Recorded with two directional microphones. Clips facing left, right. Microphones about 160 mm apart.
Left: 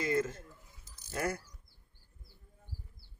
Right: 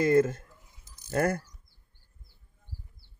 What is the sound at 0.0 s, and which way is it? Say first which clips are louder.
Speech: right 9 dB; 55° right (ahead or behind).